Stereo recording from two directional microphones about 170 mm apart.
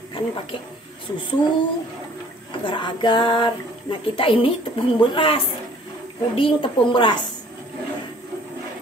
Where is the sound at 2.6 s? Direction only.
30° left (ahead or behind).